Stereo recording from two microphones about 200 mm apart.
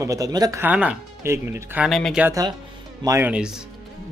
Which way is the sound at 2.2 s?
15° right (ahead or behind).